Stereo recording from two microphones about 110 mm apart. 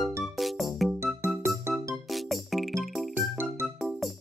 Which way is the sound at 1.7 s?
20° right (ahead or behind).